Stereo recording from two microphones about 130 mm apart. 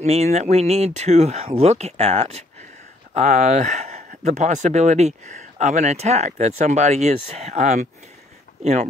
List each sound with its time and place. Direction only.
0.0 s speech: 55° right (ahead or behind)